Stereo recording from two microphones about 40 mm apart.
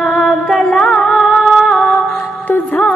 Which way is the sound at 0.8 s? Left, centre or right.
Centre.